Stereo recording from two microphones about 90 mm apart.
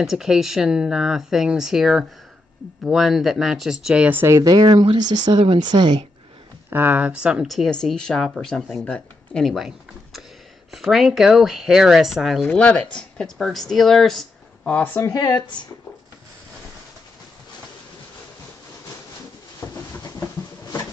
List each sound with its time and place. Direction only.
0.0 s speech: 5° right (ahead or behind)
4.3 s speech: 45° right (ahead or behind)
6.7 s speech: 20° right (ahead or behind)
7.4 s speech: centre (ahead or behind)
9.5 s speech: centre (ahead or behind)
12.4 s speech: 10° left (ahead or behind)
15.0 s speech: 40° left (ahead or behind)
19.6 s a sound: 30° left (ahead or behind)